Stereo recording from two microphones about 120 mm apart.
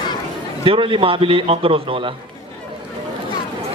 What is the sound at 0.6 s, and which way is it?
A man's voice, 45° right (ahead or behind).